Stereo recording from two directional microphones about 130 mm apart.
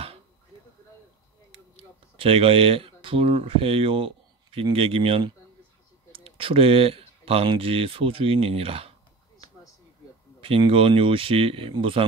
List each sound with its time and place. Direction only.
2.1 s speech: 45° right (ahead or behind)
10.4 s speech: 45° right (ahead or behind)